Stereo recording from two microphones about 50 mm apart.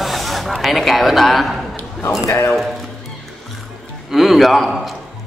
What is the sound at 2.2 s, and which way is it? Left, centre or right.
Speech, left.